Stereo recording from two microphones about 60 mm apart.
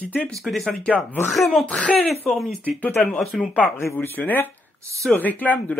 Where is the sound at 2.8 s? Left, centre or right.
Left.